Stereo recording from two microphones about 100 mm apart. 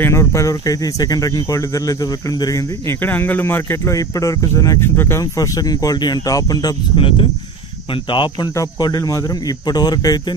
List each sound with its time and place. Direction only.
0.0 s speech: 25° left (ahead or behind)
3.0 s speech: 20° left (ahead or behind)
5.2 s speech: 35° left (ahead or behind)
7.0 s speech: 60° left (ahead or behind)
8.5 s speech: 40° left (ahead or behind)